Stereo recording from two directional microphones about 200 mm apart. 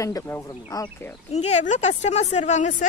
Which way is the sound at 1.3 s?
35° left (ahead or behind).